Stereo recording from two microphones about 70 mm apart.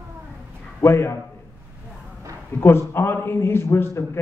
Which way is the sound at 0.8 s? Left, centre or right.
Left.